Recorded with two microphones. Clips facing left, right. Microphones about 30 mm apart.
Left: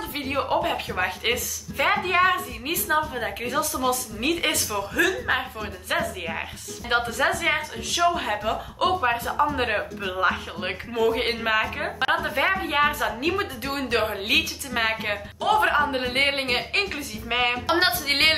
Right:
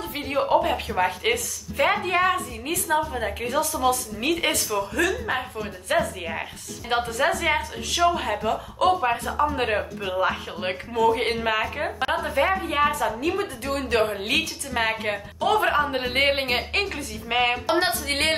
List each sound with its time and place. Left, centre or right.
0.2 s a woman's voice: centre
12.6 s female singing: left
13.9 s a woman's voice: centre
17.7 s female singing: left